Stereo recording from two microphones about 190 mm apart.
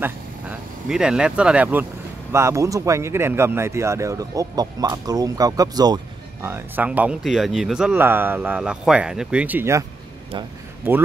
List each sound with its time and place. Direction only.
0.0 s speech: 5° right (ahead or behind)